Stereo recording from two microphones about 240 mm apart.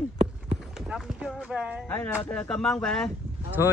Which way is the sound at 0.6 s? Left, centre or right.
Centre.